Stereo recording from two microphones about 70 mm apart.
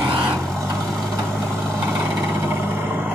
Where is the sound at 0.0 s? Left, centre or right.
Right.